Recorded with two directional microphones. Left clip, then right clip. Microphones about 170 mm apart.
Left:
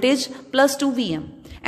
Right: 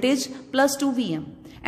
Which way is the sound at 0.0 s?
20° left (ahead or behind).